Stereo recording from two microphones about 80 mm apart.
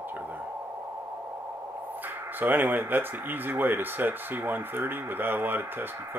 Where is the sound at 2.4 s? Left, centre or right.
Right.